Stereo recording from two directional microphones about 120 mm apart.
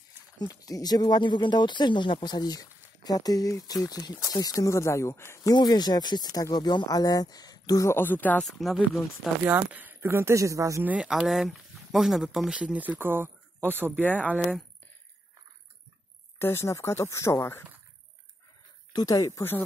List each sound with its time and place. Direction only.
0.4 s speech: 30° left (ahead or behind)
7.9 s speech: 15° left (ahead or behind)
8.4 s speech: centre (ahead or behind)
9.4 s speech: 15° right (ahead or behind)
10.8 s speech: 10° right (ahead or behind)
14.0 s speech: 10° left (ahead or behind)
16.3 s speech: 20° left (ahead or behind)
18.9 s speech: 30° left (ahead or behind)